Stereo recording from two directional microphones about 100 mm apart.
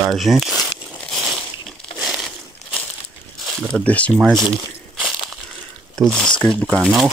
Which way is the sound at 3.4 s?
Centre (ahead or behind).